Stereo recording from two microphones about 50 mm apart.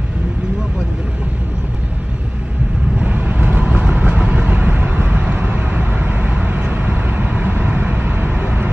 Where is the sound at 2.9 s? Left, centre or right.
Right.